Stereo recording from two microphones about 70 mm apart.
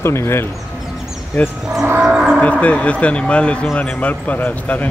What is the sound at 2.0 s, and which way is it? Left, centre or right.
Livestock, centre.